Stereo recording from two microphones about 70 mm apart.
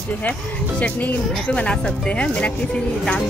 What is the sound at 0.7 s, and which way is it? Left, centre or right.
Speech, centre.